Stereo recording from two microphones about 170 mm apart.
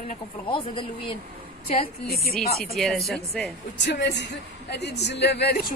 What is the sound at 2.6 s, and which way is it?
Speech, centre (ahead or behind).